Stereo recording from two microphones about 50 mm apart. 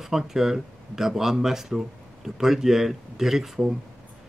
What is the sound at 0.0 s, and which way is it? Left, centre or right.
Speech, centre.